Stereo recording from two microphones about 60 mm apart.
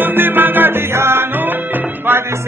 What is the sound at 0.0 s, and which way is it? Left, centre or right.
Music, right.